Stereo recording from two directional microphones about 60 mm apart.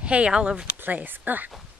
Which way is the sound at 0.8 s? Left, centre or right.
Right.